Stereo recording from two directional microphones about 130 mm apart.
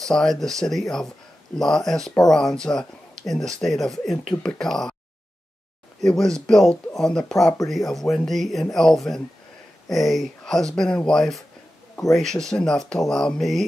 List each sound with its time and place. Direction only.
0.0 s speech: 5° left (ahead or behind)
5.9 s speech: 5° left (ahead or behind)